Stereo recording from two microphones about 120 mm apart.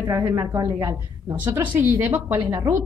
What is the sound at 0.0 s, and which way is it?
A woman's voice, 25° right (ahead or behind).